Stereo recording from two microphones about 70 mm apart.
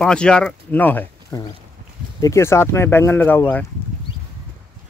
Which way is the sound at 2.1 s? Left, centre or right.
Left.